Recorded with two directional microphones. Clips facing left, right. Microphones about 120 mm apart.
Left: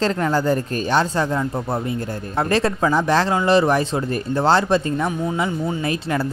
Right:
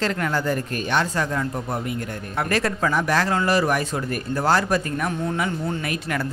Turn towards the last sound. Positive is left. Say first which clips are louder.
# left 4 dB
turn(degrees=25)  # may be behind; listen again after turning